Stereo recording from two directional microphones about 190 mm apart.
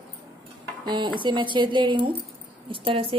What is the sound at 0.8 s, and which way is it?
A woman's voice, 20° right (ahead or behind).